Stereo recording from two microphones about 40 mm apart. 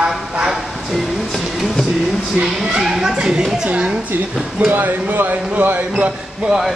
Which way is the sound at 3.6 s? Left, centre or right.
Right.